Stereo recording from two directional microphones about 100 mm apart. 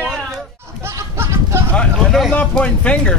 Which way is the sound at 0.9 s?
25° right (ahead or behind).